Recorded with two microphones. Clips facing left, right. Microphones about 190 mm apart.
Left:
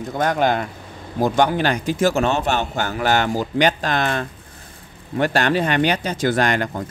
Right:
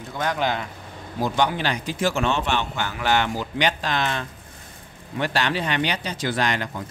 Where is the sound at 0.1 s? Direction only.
50° left (ahead or behind).